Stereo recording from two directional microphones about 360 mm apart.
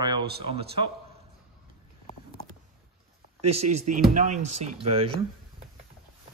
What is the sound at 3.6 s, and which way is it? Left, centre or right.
Speech, right.